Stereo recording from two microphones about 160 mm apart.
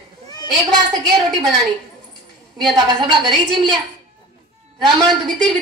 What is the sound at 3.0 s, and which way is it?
Speech, 25° right (ahead or behind).